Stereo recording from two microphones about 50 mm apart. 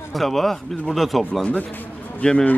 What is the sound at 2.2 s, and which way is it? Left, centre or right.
Speech, left.